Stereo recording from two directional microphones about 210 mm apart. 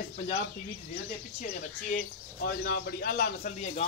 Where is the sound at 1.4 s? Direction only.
40° left (ahead or behind).